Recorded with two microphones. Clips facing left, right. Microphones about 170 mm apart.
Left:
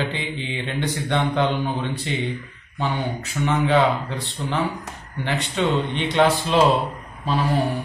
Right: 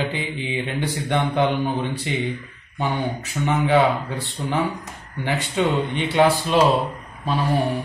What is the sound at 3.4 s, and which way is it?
Mantra, 15° right (ahead or behind).